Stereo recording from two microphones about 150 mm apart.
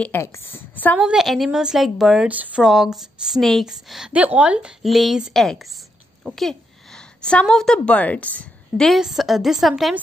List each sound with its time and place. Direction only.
0.0 s a woman's voice: 15° left (ahead or behind)
0.9 s a woman's voice: 5° right (ahead or behind)